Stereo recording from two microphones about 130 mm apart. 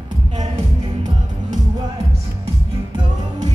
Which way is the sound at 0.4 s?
65° right (ahead or behind).